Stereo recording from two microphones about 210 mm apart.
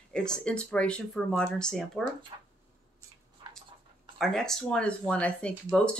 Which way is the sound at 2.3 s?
25° right (ahead or behind).